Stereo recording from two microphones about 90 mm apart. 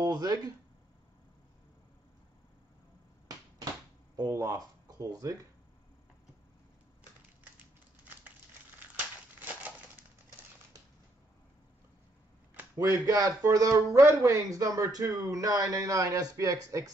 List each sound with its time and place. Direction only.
0.0 s a sound: 50° right (ahead or behind)
4.2 s speech: 40° right (ahead or behind)
9.4 s crushing: 20° right (ahead or behind)
12.7 s speech: 35° right (ahead or behind)